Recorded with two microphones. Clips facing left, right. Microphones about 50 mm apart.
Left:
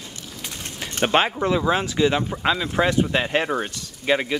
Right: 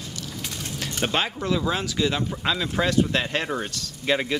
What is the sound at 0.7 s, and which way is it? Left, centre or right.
Speech, left.